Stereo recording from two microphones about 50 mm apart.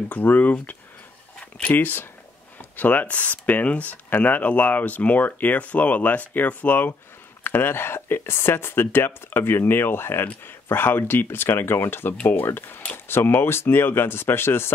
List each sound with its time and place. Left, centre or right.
0.2 s speech: left